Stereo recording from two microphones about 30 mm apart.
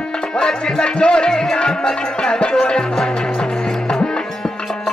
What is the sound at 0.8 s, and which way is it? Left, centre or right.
Music, left.